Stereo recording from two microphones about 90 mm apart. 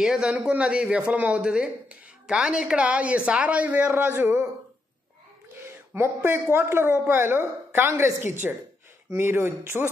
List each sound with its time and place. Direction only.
0.0 s a man's voice: 10° right (ahead or behind)
4.1 s speech: 30° right (ahead or behind)
5.9 s speech: 25° right (ahead or behind)